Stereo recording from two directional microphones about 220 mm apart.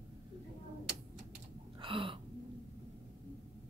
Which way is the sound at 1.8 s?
25° right (ahead or behind).